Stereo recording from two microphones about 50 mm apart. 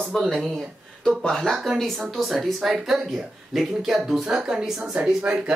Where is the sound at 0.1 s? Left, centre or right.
Centre.